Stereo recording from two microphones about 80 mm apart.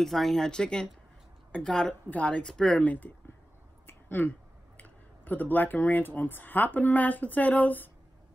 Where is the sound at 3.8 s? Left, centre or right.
Left.